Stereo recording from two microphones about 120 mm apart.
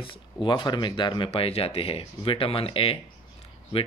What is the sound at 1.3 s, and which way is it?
Speech, 55° left (ahead or behind).